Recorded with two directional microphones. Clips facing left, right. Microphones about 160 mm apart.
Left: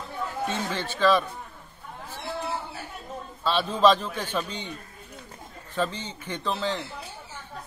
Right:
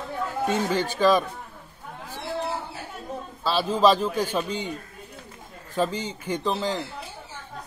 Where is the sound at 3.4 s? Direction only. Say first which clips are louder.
Right 1 dB; 10° right (ahead or behind).